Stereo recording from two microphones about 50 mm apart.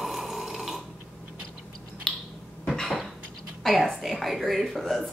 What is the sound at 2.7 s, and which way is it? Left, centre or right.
Cough, centre.